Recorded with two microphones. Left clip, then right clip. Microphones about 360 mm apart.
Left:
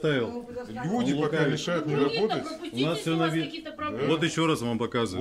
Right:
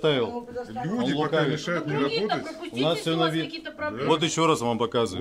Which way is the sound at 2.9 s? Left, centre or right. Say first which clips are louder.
Right 2 dB; centre.